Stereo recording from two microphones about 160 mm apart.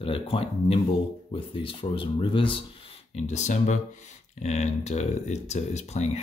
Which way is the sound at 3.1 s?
45° left (ahead or behind).